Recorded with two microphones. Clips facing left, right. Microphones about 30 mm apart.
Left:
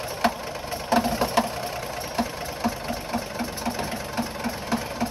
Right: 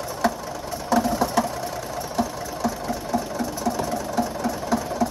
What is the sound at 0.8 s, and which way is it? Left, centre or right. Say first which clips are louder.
Engine: right 1 dB; left.